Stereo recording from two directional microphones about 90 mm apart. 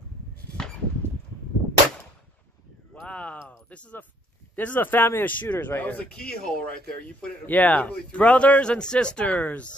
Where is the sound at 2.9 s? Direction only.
15° left (ahead or behind).